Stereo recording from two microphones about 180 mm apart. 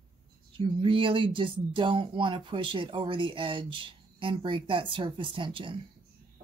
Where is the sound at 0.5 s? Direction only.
30° right (ahead or behind).